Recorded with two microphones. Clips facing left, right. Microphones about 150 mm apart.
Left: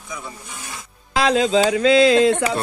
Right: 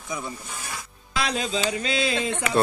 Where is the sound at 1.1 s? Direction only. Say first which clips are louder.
Left 10 dB; 90° left.